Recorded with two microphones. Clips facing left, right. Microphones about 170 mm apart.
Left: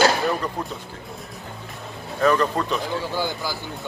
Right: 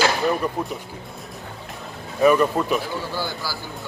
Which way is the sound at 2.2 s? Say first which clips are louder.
Right 3 dB; 10° right (ahead or behind).